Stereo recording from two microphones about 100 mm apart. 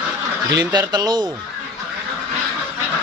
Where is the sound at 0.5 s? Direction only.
40° right (ahead or behind).